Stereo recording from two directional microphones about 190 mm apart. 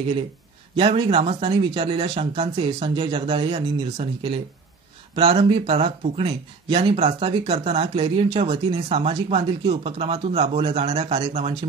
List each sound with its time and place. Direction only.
0.7 s speech: 25° right (ahead or behind)